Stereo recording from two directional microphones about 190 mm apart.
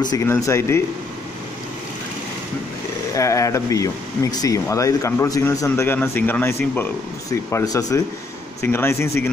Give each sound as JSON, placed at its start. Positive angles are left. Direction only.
{"t": 0.0, "sound": "speech", "side_deg": 20}
{"t": 3.2, "sound": "speech", "side_deg": 15}